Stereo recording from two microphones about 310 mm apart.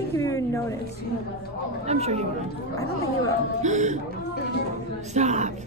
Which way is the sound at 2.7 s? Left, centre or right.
Centre.